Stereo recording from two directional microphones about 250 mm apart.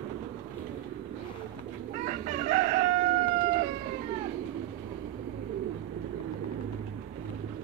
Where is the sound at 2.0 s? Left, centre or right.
Right.